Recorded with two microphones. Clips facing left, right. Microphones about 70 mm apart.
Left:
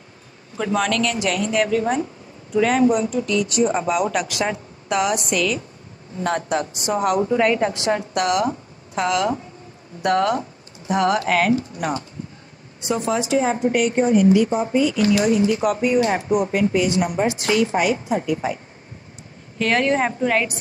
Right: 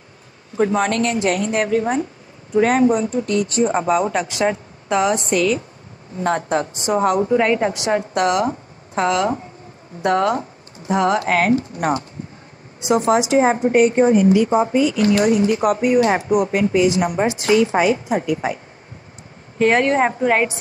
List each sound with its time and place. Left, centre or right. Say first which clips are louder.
0.6 s a woman's voice: right 3 dB; right
12.8 s speech: right 6 dB; right
13.4 s speech: right 5 dB; right
17.0 s speech: right 2 dB; right
17.6 s speech: right 3 dB; right
19.6 s a woman's voice: right 4 dB; right
20.0 s speech: right 3 dB; right